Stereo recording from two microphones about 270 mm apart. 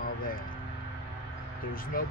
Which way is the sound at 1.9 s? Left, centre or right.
Left.